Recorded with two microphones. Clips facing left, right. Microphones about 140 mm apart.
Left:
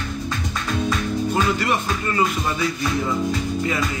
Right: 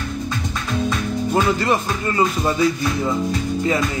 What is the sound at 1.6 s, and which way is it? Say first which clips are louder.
Music: right 3 dB; 30° right (ahead or behind).